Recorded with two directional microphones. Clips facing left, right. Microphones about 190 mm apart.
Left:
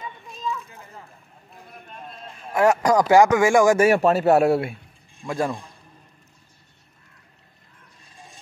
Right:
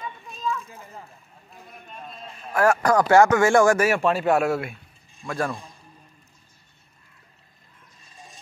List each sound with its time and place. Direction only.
2.5 s speech: 20° left (ahead or behind)
3.7 s speech: 30° left (ahead or behind)
4.0 s speech: 40° left (ahead or behind)
5.2 s speech: 15° left (ahead or behind)